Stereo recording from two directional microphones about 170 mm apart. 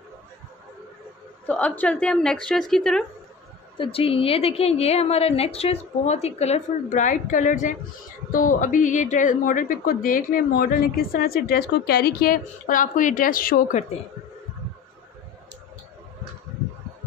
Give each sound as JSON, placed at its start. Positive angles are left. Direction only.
{"t": 1.5, "sound": "a woman's voice", "side_deg": 5}
{"t": 3.7, "sound": "a woman's voice", "side_deg": 30}